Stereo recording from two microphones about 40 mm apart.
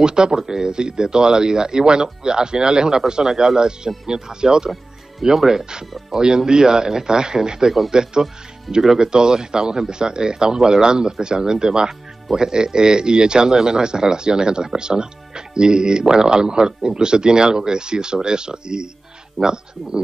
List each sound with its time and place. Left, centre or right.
0.0 s speech: centre